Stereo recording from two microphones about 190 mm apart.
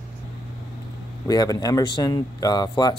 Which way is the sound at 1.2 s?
20° left (ahead or behind).